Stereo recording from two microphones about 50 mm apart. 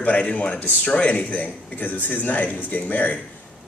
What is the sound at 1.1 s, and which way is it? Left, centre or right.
Speech, left.